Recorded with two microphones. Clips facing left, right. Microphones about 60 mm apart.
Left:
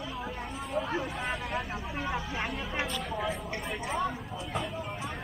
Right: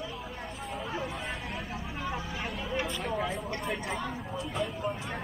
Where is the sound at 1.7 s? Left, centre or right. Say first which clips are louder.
Left 2 dB; left.